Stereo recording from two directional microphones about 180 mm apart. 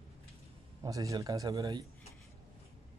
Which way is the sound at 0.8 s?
20° right (ahead or behind).